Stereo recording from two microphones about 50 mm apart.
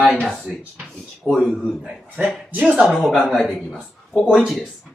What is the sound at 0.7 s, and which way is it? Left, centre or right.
Speech, centre.